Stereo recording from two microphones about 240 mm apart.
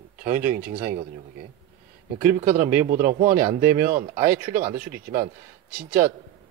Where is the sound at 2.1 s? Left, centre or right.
Right.